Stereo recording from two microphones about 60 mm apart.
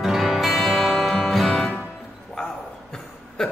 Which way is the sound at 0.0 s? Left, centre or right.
Centre.